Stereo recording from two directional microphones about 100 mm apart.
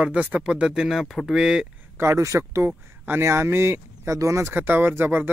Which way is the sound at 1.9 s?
25° right (ahead or behind).